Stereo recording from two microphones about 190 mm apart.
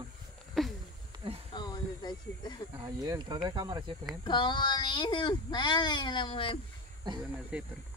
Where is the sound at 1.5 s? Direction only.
20° left (ahead or behind).